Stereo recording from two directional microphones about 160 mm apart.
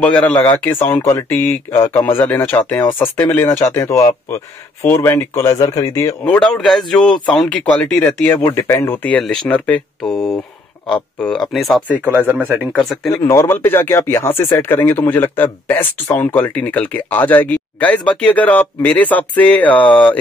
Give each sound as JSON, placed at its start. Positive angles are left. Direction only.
{"t": 0.0, "sound": "speech", "side_deg": 10}
{"t": 6.2, "sound": "speech", "side_deg": 5}
{"t": 12.1, "sound": "speech", "side_deg": -10}
{"t": 12.7, "sound": "speech", "side_deg": 5}
{"t": 13.1, "sound": "speech", "side_deg": 15}